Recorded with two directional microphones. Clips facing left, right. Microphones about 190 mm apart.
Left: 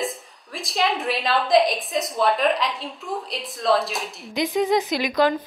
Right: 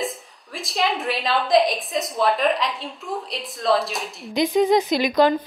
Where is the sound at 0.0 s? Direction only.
Centre (ahead or behind).